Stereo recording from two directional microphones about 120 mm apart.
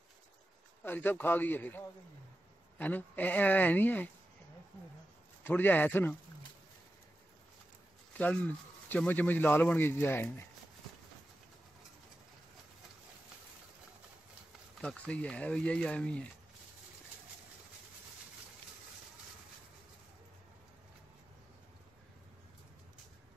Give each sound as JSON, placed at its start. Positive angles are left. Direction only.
{"t": 0.8, "sound": "speech", "side_deg": 15}
{"t": 5.4, "sound": "speech", "side_deg": 15}
{"t": 8.2, "sound": "speech", "side_deg": 15}
{"t": 14.8, "sound": "speech", "side_deg": 10}